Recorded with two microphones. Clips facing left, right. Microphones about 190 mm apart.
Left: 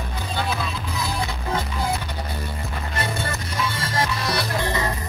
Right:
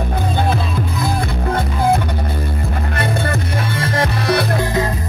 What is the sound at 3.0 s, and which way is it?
Music, 55° right (ahead or behind).